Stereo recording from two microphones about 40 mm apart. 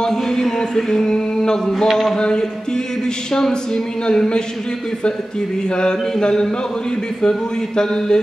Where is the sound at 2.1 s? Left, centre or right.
Left.